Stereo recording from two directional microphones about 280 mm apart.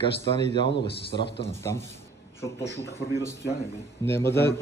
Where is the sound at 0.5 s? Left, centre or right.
Centre.